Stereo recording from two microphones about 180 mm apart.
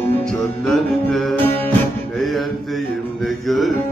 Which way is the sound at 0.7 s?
Centre (ahead or behind).